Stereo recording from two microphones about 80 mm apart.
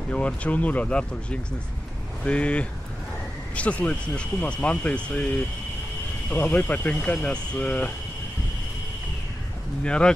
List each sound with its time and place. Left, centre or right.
0.1 s speech: centre
9.8 s speech: centre